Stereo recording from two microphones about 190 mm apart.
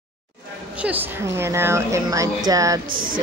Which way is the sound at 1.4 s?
15° right (ahead or behind).